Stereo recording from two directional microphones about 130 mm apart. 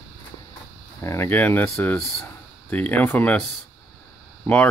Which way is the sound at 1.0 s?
20° left (ahead or behind).